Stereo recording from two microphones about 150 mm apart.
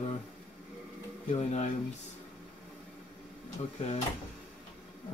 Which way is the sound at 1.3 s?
50° left (ahead or behind).